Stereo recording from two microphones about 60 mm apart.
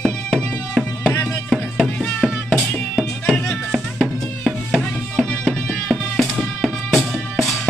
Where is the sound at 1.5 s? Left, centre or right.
Centre.